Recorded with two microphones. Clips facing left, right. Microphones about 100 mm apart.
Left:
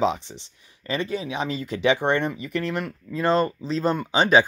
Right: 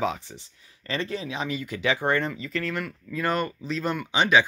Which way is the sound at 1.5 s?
30° left (ahead or behind).